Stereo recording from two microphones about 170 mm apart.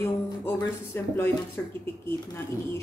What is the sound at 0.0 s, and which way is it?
Speech, 15° left (ahead or behind).